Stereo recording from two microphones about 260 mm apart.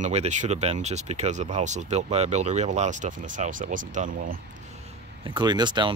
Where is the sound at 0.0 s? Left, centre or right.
Right.